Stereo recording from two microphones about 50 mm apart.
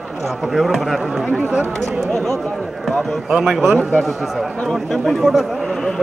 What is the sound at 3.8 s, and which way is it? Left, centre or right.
A man's voice, centre.